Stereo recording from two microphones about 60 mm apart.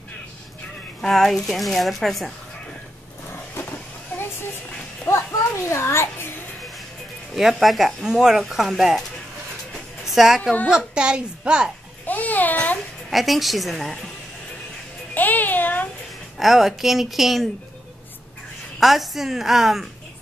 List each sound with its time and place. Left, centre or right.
1.0 s speech: centre
3.3 s vehicle: left
5.1 s a child's voice: left
5.7 s a child's voice: left
7.3 s speech: centre
10.0 s a woman's voice: centre
11.0 s a woman's voice: centre
12.1 s babbling: left
13.1 s speech: centre
15.1 s a child's voice: left
16.3 s speech: centre
18.8 s speech: centre